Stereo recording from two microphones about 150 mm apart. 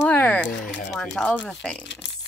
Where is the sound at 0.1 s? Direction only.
10° left (ahead or behind).